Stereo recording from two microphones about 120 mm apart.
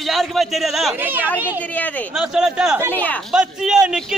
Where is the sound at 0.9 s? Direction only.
15° right (ahead or behind).